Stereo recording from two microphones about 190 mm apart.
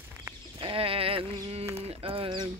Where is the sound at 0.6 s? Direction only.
30° right (ahead or behind).